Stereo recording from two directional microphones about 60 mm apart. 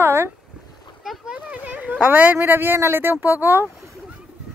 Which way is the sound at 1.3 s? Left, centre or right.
Right.